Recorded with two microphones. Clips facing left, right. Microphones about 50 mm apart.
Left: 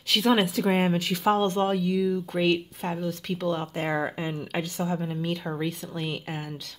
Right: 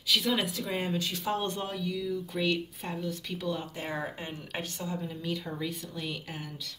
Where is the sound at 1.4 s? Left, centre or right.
Left.